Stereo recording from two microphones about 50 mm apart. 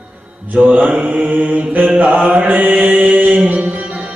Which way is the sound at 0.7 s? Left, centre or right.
Right.